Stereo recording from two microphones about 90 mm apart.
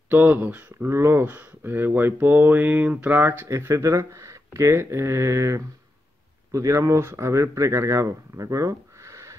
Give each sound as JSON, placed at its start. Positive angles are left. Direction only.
{"t": 0.1, "sound": "speech", "side_deg": -20}
{"t": 3.5, "sound": "speech", "side_deg": -35}